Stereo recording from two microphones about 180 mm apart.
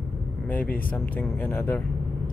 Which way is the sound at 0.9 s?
10° left (ahead or behind).